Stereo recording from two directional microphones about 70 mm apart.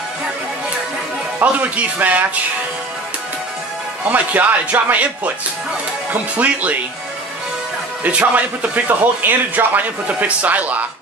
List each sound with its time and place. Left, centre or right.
1.4 s speech: right
4.1 s speech: right
6.3 s speech: right
8.0 s speech: centre